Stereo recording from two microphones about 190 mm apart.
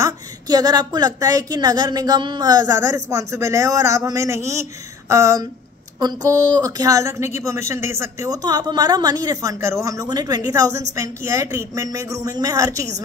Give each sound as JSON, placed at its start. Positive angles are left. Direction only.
{"t": 0.0, "sound": "a woman's voice", "side_deg": -20}